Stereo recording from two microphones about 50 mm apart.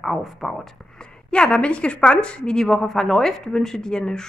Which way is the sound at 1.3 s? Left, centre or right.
Centre.